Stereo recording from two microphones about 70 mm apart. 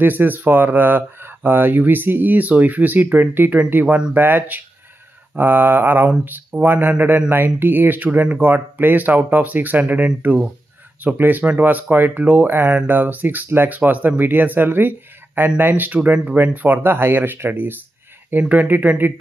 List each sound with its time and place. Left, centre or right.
0.0 s speech: right
3.8 s speech: centre
4.1 s speech: right